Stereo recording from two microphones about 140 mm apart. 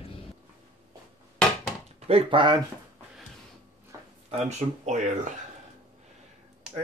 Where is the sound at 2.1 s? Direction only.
40° right (ahead or behind).